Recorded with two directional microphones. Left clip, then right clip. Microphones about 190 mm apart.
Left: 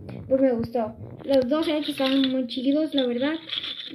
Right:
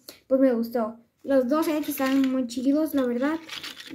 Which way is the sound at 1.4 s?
10° right (ahead or behind).